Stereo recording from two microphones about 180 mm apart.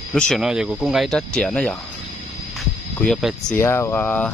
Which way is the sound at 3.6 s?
15° left (ahead or behind).